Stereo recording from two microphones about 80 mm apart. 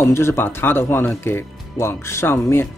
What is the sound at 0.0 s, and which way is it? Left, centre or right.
Speech, left.